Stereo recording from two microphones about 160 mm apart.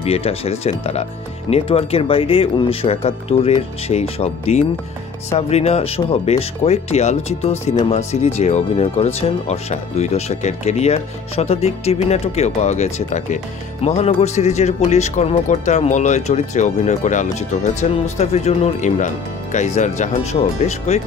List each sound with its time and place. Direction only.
0.0 s speech: 40° left (ahead or behind)